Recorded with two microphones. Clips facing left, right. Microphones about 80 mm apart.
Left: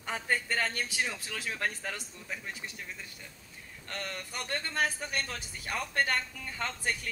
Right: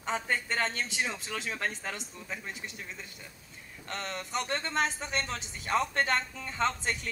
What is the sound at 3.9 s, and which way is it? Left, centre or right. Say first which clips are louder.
A man's voice: right 3 dB; right.